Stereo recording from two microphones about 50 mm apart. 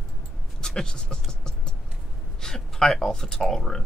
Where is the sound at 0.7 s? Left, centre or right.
Centre.